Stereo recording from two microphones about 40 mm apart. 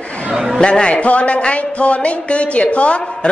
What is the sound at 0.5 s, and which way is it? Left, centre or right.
Speech, left.